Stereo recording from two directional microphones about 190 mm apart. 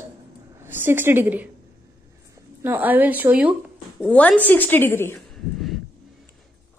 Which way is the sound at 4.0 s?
5° left (ahead or behind).